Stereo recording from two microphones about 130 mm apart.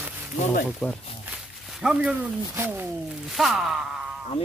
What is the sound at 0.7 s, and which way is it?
Speech, 5° left (ahead or behind).